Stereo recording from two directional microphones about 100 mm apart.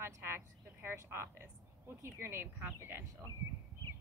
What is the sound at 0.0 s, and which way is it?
A woman's voice, 25° right (ahead or behind).